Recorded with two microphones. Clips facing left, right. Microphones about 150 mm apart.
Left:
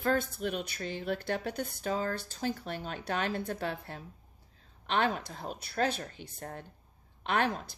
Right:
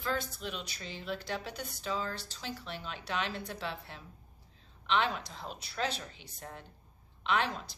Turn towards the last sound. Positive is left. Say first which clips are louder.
# left 2 dB
turn(degrees=50)  # may be behind; listen again after turning